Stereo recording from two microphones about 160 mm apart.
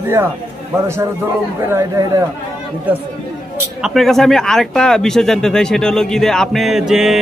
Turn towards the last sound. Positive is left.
turn(degrees=0)  # may be behind; listen again after turning